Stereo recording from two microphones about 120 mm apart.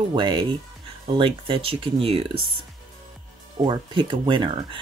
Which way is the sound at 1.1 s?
65° right (ahead or behind).